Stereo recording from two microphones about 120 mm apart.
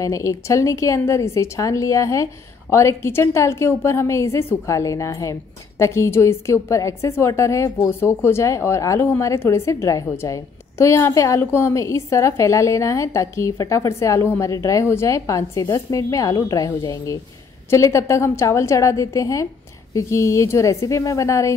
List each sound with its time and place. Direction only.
0.0 s a woman's voice: 25° left (ahead or behind)